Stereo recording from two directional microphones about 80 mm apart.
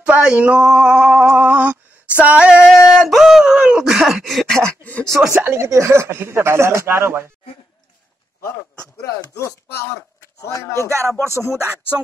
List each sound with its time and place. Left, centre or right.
0.0 s speech: centre
1.3 s female singing: right
2.6 s speech: centre
5.3 s speech: right
10.6 s speech: left
10.9 s speech: right